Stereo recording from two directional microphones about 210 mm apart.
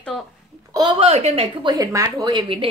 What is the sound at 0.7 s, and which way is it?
A woman's voice, 20° right (ahead or behind).